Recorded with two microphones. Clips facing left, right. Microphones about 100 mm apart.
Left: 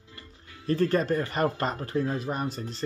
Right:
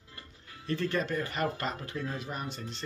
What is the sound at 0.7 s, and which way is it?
Speech, 40° left (ahead or behind).